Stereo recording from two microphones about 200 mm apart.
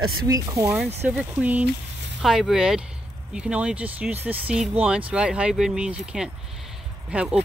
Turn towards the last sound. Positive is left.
turn(degrees=-5)  # may be behind; listen again after turning